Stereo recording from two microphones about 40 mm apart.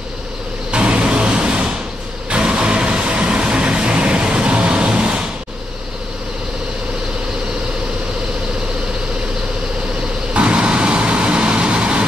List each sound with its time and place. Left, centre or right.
0.7 s vehicle: right
10.3 s vehicle: right